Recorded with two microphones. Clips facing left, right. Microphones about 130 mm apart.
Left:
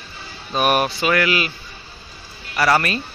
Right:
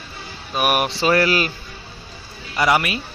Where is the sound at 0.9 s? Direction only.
30° right (ahead or behind).